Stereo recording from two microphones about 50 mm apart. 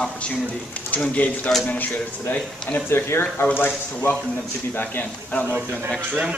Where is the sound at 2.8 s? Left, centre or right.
Left.